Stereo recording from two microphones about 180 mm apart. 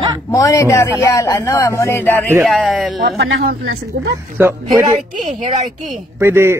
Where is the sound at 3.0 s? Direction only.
80° right.